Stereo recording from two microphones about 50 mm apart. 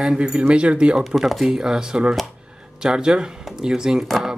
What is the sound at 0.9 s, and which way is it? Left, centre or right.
Speech, centre.